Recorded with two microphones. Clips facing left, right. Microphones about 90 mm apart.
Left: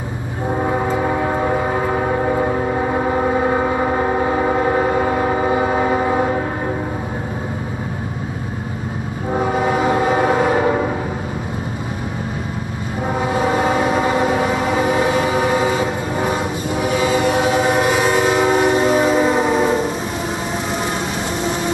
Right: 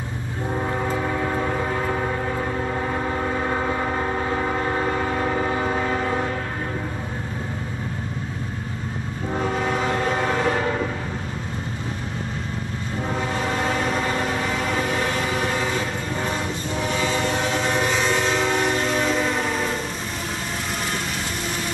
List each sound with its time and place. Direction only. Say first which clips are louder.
0.5 s train: left 6 dB; 30° left (ahead or behind)
9.4 s train: left 6 dB; 15° left (ahead or behind)
13.1 s train: left 8 dB; 15° left (ahead or behind)